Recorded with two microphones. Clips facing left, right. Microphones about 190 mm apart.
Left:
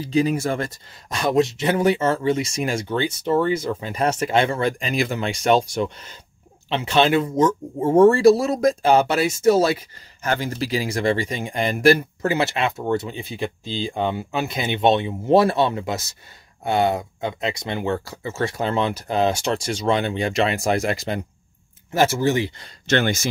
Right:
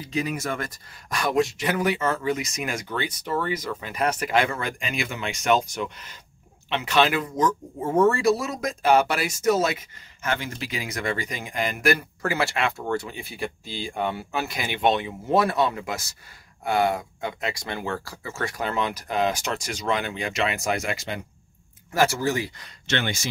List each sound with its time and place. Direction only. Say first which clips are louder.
0.0 s speech: left 8 dB; 30° left (ahead or behind)
21.9 s speech: left 4 dB; 20° left (ahead or behind)
22.8 s speech: left 7 dB; 45° left (ahead or behind)